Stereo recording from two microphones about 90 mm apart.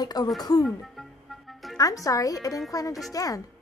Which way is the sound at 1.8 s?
40° left (ahead or behind).